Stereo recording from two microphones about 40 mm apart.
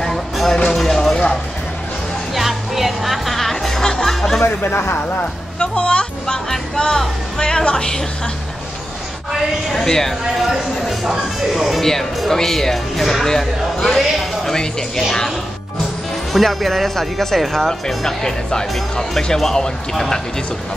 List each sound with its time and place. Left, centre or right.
0.0 s music: centre
2.3 s music: centre
4.6 s speech: left
5.6 s speech: left
6.2 s speech: centre
9.8 s speech: centre
10.5 s speech: centre
11.8 s speech: centre
16.3 s speech: centre